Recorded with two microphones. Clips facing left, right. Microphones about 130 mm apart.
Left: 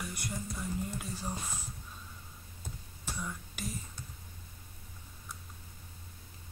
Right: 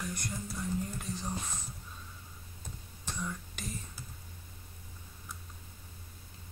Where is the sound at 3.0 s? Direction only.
5° left (ahead or behind).